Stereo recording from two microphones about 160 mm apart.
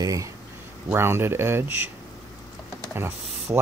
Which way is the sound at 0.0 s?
20° right (ahead or behind).